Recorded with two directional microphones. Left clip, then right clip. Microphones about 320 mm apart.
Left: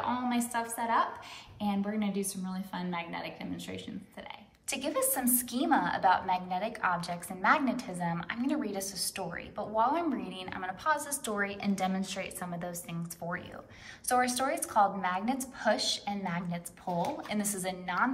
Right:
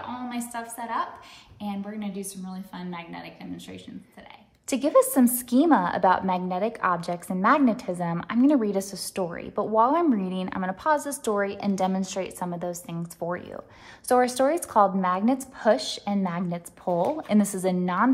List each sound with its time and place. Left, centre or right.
0.0 s a sound: centre
1.6 s a woman's voice: centre
4.6 s a woman's voice: centre
14.0 s a woman's voice: centre